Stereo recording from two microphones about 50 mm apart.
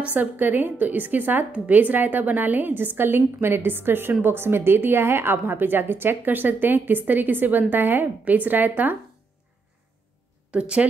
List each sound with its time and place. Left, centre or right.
0.0 s a woman's voice: right
10.5 s speech: right